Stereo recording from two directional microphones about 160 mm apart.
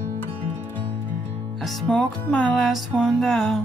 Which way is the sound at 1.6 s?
5° left (ahead or behind).